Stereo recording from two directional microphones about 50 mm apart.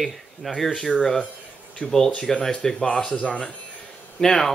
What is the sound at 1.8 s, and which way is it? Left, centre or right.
Speech, left.